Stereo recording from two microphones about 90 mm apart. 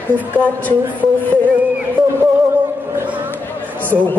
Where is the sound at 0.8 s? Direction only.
20° right (ahead or behind).